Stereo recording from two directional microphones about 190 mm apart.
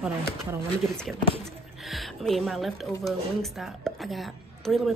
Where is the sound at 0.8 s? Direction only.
Centre (ahead or behind).